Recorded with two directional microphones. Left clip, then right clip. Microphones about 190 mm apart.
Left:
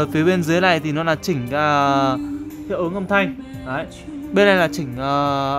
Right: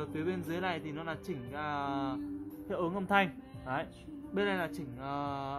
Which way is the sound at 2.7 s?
Centre (ahead or behind).